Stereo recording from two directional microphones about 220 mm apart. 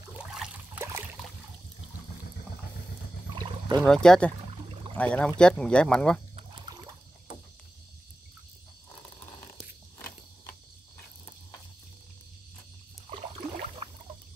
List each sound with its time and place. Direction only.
0.1 s a sound: 5° right (ahead or behind)
3.3 s rowboat: 20° right (ahead or behind)
3.8 s speech: 5° left (ahead or behind)